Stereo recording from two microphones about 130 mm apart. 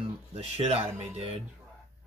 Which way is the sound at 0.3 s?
55° right (ahead or behind).